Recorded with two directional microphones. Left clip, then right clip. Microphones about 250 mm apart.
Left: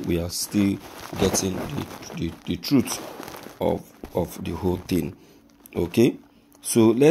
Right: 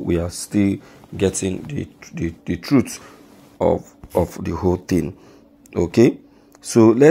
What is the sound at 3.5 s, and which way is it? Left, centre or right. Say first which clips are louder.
Speech: right 7 dB; centre.